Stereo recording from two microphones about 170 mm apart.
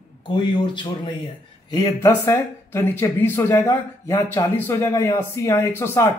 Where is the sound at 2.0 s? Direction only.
15° left (ahead or behind).